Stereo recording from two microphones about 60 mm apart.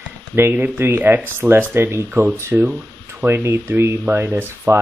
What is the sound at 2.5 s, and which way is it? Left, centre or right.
Speech, right.